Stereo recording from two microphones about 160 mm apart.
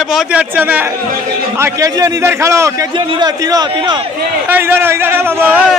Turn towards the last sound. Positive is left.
turn(degrees=-15)  # may be behind; listen again after turning